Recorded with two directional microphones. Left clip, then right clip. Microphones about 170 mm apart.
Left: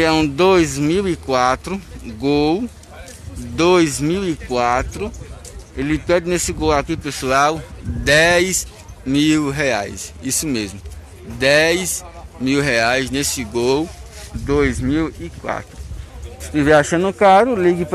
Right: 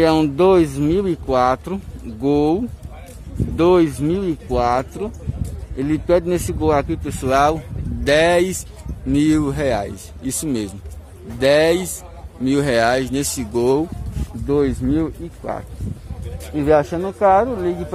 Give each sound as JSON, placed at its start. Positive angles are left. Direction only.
{"t": 0.0, "sound": "speech", "side_deg": -15}
{"t": 14.4, "sound": "speech", "side_deg": -15}
{"t": 16.7, "sound": "speech", "side_deg": 15}